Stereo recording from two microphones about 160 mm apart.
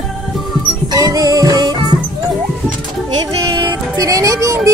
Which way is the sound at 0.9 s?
20° right (ahead or behind).